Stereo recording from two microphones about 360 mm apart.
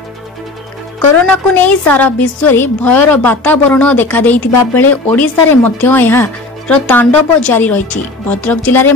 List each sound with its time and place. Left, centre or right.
1.1 s a woman's voice: centre